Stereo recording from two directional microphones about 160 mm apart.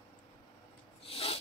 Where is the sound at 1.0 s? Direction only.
40° left (ahead or behind).